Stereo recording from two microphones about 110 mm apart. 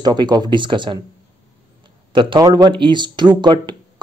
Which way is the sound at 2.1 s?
50° right (ahead or behind).